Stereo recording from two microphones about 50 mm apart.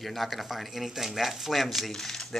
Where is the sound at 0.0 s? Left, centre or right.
Centre.